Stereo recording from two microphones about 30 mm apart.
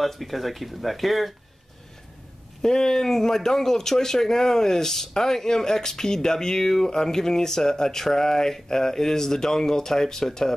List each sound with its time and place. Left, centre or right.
0.0 s speech: centre
2.6 s speech: centre